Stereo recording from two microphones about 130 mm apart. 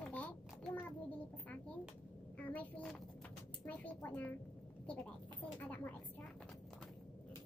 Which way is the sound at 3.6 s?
10° left (ahead or behind).